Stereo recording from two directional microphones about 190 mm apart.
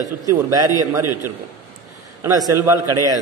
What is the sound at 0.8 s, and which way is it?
Speech, 15° right (ahead or behind).